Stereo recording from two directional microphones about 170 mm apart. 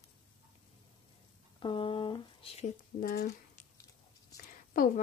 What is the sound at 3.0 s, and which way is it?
Speech, 55° left (ahead or behind).